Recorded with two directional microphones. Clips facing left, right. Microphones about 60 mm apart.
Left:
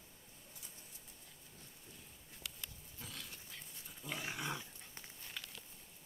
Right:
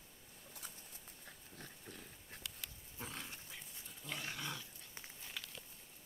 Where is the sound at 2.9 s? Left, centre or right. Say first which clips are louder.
Right 5 dB; right.